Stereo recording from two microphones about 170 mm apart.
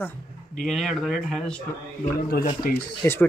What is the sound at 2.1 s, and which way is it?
Speech, 60° left (ahead or behind).